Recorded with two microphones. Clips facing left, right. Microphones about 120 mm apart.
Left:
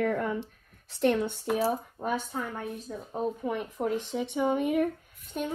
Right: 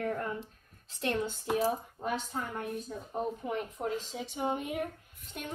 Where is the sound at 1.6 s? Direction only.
40° left (ahead or behind).